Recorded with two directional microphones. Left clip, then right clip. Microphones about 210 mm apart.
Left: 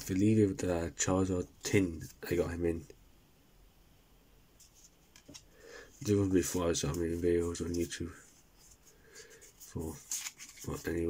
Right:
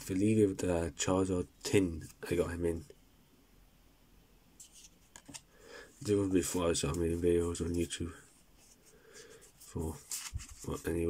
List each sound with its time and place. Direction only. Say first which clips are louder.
0.0 s speech: even; centre (ahead or behind)
5.7 s speech: even; centre (ahead or behind)
9.7 s a sound: even; 5° right (ahead or behind)